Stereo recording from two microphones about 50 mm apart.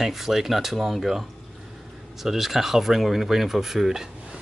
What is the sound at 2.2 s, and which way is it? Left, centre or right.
Speech, centre.